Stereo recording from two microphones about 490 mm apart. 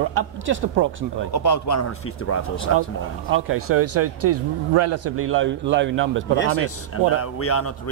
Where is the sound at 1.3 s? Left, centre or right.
Left.